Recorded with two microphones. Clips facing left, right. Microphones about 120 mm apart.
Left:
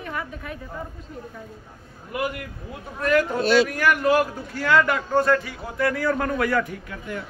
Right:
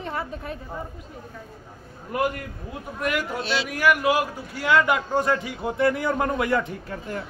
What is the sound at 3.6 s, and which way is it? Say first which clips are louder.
A man's voice: even; 10° right (ahead or behind).